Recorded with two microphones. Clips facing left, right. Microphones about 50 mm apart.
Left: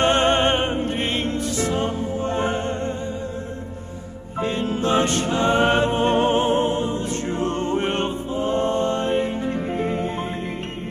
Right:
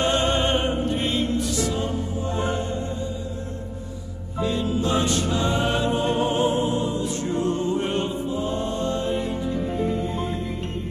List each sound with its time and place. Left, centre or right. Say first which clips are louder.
0.0 s music: left 4 dB; left
4.4 s music: left 1 dB; left